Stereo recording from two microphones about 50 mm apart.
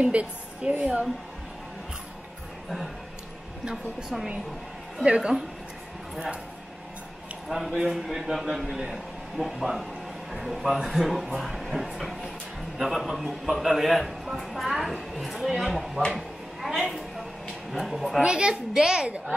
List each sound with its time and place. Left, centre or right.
0.0 s a woman's voice: right
3.7 s a man's voice: centre
5.0 s a woman's voice: centre
7.4 s a man's voice: centre
16.1 s a sound: centre
17.6 s a man's voice: centre
18.2 s a child's voice: centre
19.0 s a woman's voice: right